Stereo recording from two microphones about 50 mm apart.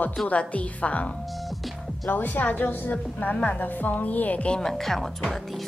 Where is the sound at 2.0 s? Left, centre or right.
Left.